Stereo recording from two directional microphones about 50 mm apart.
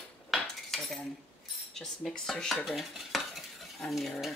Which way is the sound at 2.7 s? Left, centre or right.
Centre.